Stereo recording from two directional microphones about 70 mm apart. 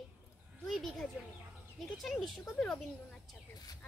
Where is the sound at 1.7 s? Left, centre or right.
Centre.